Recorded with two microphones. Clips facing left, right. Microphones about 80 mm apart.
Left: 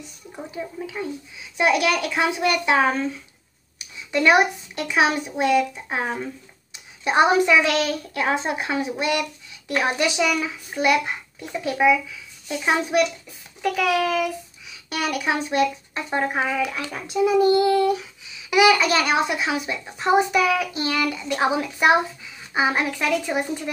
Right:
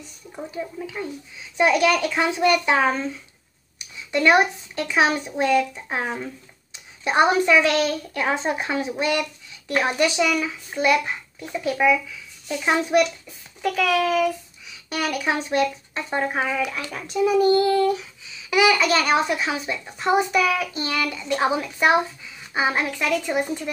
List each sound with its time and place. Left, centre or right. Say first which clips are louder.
0.3 s speech: right 1 dB; centre
1.6 s child singing: right 2 dB; centre
4.1 s child singing: even; centre
12.4 s speech: right 1 dB; centre
13.7 s child singing: even; centre
17.3 s child singing: even; centre
20.0 s child singing: left 1 dB; centre